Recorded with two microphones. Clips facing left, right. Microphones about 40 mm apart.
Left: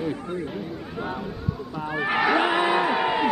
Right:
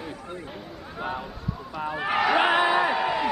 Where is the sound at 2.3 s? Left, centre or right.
Centre.